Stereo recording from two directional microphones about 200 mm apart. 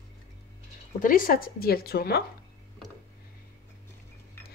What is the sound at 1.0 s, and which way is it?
Speech, 40° left (ahead or behind).